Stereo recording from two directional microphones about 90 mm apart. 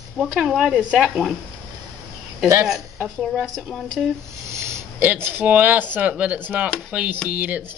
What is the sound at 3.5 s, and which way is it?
Speech, centre (ahead or behind).